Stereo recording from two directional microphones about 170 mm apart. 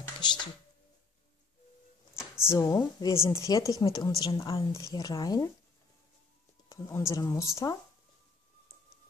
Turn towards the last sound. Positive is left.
turn(degrees=15)  # may be behind; listen again after turning